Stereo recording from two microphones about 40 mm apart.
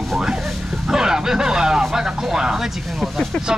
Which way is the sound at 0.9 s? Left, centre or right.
Centre.